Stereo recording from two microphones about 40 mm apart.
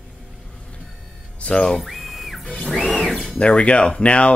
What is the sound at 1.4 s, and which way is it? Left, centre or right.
Speech, left.